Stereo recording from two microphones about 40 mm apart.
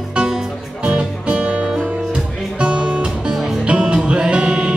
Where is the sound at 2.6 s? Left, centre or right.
Right.